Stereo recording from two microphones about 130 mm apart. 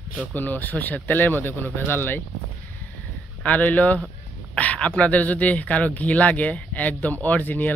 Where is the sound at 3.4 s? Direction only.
10° left (ahead or behind).